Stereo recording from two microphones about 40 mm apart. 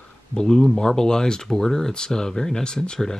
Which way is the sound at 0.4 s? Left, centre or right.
Centre.